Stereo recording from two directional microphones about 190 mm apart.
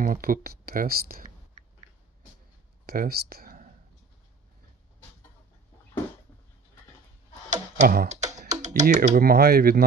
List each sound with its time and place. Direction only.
0.0 s speech: 50° right (ahead or behind)
2.9 s speech: 55° right (ahead or behind)
7.4 s speech: 40° right (ahead or behind)